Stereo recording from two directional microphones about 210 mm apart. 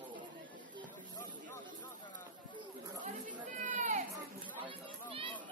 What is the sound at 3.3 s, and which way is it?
Chatter, 35° right (ahead or behind).